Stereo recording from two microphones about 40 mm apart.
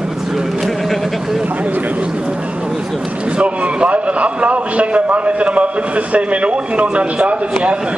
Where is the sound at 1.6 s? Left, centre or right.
Right.